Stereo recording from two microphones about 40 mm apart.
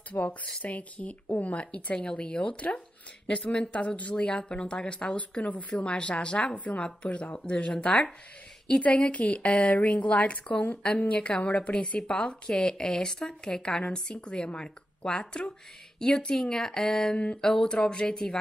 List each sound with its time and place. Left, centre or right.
0.1 s a woman's voice: left
0.5 s speech: left
0.7 s a woman's voice: left
11.1 s a woman's voice: left